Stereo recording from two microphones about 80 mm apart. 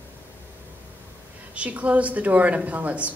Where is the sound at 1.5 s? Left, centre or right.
Centre.